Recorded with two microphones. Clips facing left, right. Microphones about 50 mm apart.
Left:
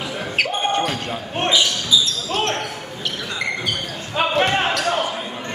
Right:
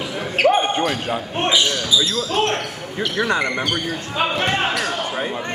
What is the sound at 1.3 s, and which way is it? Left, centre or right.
Speech, centre.